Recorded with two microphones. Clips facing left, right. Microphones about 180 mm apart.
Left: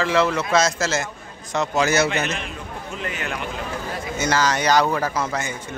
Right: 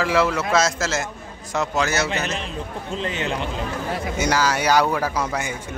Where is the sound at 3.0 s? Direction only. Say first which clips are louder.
Right 3 dB; 25° right (ahead or behind).